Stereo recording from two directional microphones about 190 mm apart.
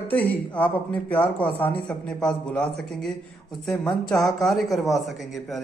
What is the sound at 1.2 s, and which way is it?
Speech, 25° left (ahead or behind).